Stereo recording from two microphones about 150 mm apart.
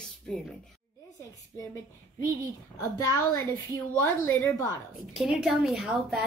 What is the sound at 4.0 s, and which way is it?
Speech, 20° left (ahead or behind).